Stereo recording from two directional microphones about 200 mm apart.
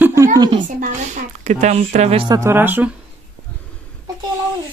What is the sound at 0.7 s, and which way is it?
Speech, 40° right (ahead or behind).